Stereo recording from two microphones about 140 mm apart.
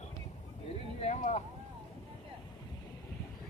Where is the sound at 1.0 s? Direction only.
55° left (ahead or behind).